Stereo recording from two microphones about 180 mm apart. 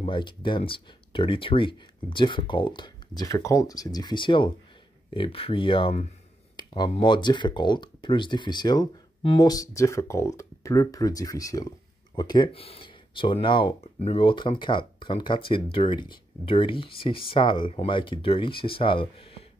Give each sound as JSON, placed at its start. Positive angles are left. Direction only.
{"t": 0.0, "sound": "speech", "side_deg": 25}